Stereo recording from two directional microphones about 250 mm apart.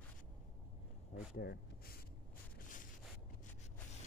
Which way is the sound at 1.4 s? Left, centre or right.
Left.